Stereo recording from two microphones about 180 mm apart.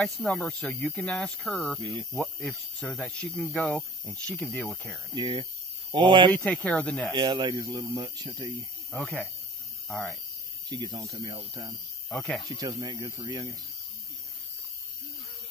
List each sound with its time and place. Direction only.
0.0 s speech: centre (ahead or behind)
1.8 s speech: 30° right (ahead or behind)
2.1 s speech: 5° left (ahead or behind)
5.1 s speech: 25° right (ahead or behind)
6.3 s speech: 10° left (ahead or behind)
7.1 s speech: 25° right (ahead or behind)
8.9 s speech: 10° left (ahead or behind)
10.7 s speech: 25° right (ahead or behind)
12.1 s speech: 5° left (ahead or behind)
12.4 s speech: 20° right (ahead or behind)